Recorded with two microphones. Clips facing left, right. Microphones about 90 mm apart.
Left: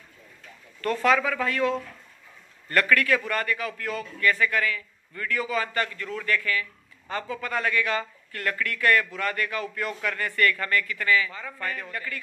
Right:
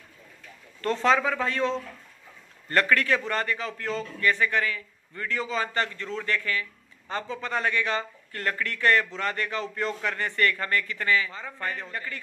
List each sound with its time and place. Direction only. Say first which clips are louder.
0.7 s a man's voice: even; 30° right (ahead or behind)